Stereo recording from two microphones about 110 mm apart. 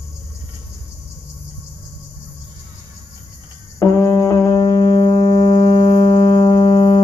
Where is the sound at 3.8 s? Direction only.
30° left (ahead or behind).